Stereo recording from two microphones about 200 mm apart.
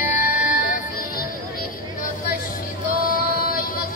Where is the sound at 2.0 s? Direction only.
45° left (ahead or behind).